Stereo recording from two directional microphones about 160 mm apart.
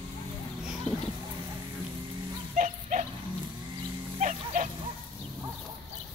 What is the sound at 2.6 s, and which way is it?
Dog, 50° right (ahead or behind).